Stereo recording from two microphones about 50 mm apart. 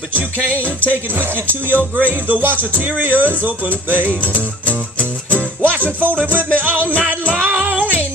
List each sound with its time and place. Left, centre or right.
0.1 s music: right
5.3 s music: right